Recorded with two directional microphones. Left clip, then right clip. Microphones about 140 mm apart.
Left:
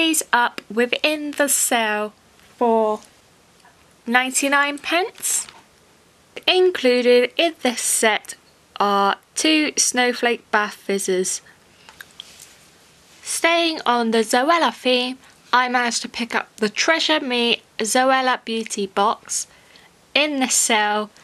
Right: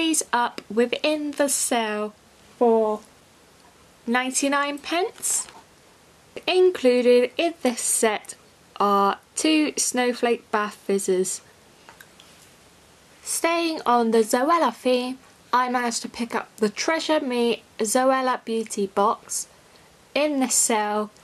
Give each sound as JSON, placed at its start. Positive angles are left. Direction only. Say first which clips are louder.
{"t": 0.0, "sound": "speech", "louder": "left 5 dB", "side_deg": 15}
{"t": 4.1, "sound": "a woman's voice", "louder": "left 5 dB", "side_deg": 15}
{"t": 12.2, "sound": "a sound", "louder": "left 10 dB", "side_deg": 20}
{"t": 13.2, "sound": "speech", "louder": "left 5 dB", "side_deg": 15}